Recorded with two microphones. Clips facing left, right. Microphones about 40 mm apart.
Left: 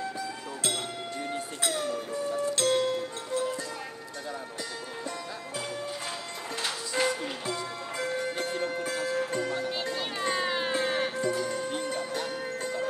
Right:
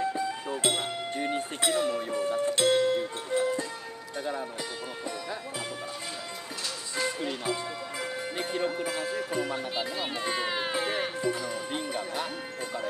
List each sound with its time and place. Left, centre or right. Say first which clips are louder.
0.6 s music: right 3 dB; right
1.6 s music: right 3 dB; right
2.6 s music: right 3 dB; centre
6.6 s music: left 4 dB; left
7.4 s music: right 1 dB; centre